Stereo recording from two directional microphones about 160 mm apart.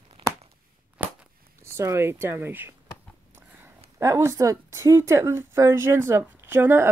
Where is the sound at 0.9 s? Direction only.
5° right (ahead or behind).